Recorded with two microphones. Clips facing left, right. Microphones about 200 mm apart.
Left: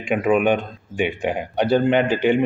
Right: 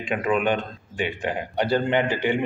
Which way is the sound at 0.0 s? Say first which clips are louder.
Left 5 dB; 10° left (ahead or behind).